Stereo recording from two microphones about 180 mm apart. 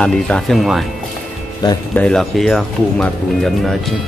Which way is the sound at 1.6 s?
20° left (ahead or behind).